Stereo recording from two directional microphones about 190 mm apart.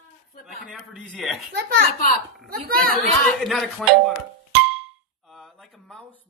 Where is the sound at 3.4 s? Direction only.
Centre (ahead or behind).